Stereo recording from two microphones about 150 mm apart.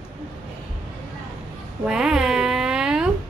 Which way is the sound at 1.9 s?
5° right (ahead or behind).